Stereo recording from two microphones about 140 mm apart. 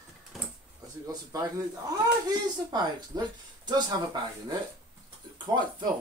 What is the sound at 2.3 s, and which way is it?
Speech, 30° right (ahead or behind).